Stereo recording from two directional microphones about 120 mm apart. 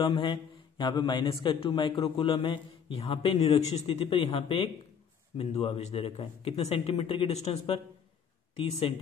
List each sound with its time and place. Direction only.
0.0 s a man's voice: 40° left (ahead or behind); by 3.8 s 60° left (ahead or behind)
3.8 s a man's voice: 50° left (ahead or behind)